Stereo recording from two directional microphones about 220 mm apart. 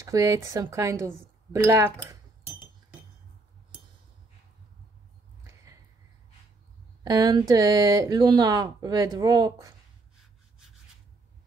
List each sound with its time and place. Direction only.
0.0 s speech: 15° right (ahead or behind)
7.0 s speech: 15° right (ahead or behind)